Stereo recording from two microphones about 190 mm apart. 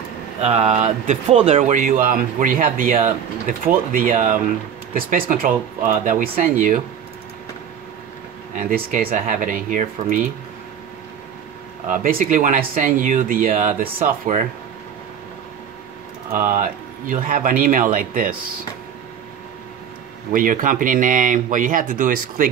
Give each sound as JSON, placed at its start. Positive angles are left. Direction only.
{"t": 0.4, "sound": "speech", "side_deg": -35}
{"t": 8.5, "sound": "speech", "side_deg": -45}
{"t": 11.9, "sound": "speech", "side_deg": -45}
{"t": 16.3, "sound": "speech", "side_deg": -45}
{"t": 20.3, "sound": "speech", "side_deg": -45}